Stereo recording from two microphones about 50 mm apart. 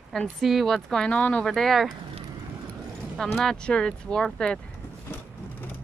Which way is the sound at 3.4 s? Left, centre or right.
Centre.